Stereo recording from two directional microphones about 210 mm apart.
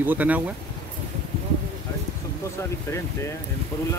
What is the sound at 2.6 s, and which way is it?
Speech, 15° left (ahead or behind).